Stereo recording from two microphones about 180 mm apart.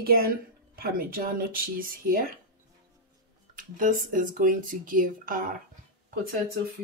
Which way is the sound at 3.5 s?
45° right (ahead or behind).